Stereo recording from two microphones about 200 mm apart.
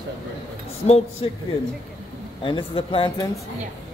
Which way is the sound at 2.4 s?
25° left (ahead or behind).